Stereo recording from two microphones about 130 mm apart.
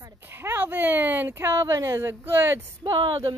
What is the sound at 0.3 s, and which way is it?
Speech, 15° right (ahead or behind).